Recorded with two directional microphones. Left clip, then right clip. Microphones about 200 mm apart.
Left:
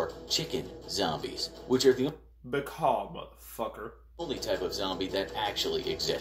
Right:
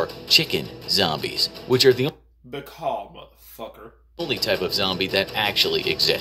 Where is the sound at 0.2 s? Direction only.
45° right (ahead or behind).